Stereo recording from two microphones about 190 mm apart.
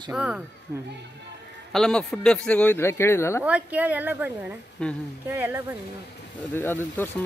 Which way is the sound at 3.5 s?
5° right (ahead or behind).